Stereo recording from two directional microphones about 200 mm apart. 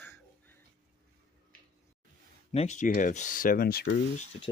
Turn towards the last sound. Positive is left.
turn(degrees=50)  # may be behind; listen again after turning